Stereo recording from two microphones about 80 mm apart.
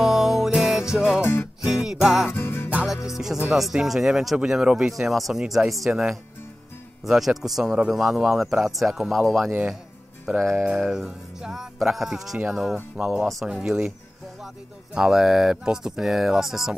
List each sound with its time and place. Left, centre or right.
0.0 s music: centre
0.9 s speech: centre
1.2 s music: left
1.6 s music: centre
2.2 s music: left
3.1 s music: centre
4.4 s speech: centre
7.1 s music: centre
10.5 s music: centre
12.9 s speech: centre
15.0 s speech: centre